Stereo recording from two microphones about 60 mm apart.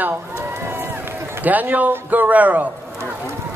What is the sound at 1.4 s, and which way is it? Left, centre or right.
A woman's voice, right.